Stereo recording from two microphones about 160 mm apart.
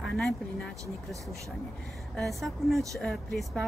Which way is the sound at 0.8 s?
20° right (ahead or behind).